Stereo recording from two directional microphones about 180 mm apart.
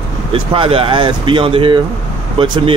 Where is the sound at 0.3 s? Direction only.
30° right (ahead or behind).